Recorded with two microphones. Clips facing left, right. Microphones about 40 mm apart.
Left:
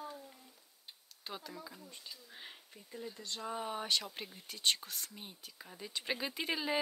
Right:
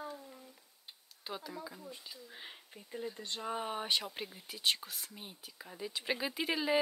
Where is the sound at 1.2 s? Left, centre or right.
Centre.